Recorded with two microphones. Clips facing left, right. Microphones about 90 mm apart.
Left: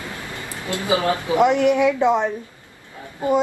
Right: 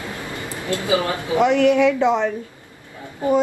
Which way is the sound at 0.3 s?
20° right (ahead or behind).